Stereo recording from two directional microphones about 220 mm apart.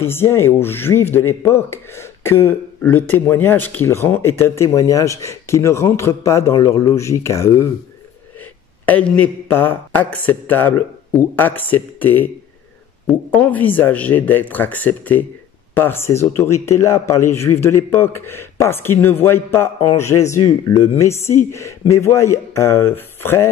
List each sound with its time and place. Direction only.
0.0 s speech: 10° left (ahead or behind)
8.8 s speech: 5° left (ahead or behind)
13.3 s speech: 5° left (ahead or behind)